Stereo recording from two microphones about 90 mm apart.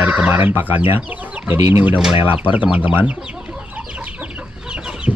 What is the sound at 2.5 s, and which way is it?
Speech, 15° right (ahead or behind).